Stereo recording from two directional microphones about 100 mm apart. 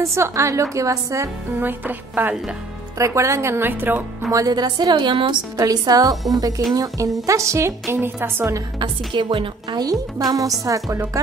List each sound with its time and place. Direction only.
0.0 s speech: 30° right (ahead or behind)
1.6 s speech: 20° right (ahead or behind)
4.3 s a woman's voice: 40° right (ahead or behind)
5.6 s a woman's voice: 40° right (ahead or behind)
8.7 s a woman's voice: 55° right (ahead or behind); by 11.0 s 35° right (ahead or behind)